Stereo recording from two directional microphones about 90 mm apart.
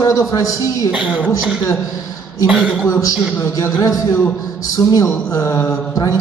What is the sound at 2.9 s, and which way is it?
A man's voice, 40° left (ahead or behind).